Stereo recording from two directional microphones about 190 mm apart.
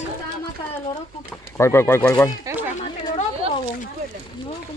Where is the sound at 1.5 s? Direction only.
15° left (ahead or behind).